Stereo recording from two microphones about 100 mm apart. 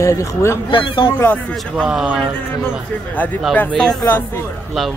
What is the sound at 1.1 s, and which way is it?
Speech, 20° left (ahead or behind).